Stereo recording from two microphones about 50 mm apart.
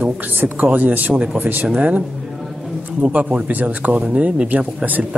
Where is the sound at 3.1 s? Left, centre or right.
Right.